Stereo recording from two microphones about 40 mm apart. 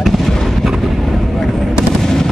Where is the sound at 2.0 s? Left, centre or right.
Centre.